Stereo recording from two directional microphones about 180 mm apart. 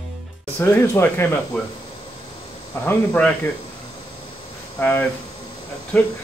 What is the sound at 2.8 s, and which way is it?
Speech, 10° left (ahead or behind).